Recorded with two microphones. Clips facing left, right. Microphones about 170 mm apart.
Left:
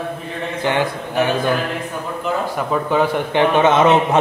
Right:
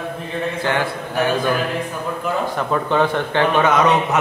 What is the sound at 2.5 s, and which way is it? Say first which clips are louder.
A man's voice: left 1 dB; 10° left (ahead or behind).